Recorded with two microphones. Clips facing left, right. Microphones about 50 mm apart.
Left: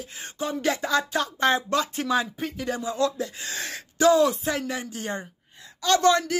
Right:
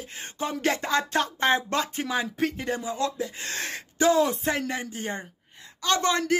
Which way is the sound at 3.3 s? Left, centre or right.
Right.